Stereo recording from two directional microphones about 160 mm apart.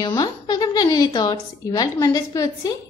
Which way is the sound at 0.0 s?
25° left (ahead or behind).